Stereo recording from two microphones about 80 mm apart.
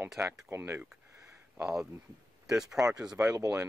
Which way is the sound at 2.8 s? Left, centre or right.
Right.